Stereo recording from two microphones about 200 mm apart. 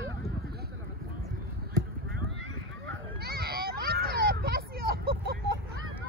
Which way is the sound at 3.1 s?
50° right (ahead or behind).